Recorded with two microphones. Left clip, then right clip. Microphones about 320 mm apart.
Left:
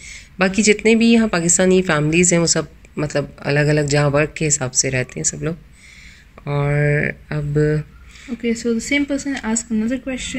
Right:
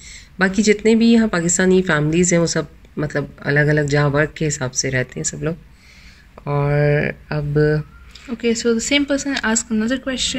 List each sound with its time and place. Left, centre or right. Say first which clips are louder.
0.0 s a woman's voice: even; centre
8.4 s speech: right 3 dB; right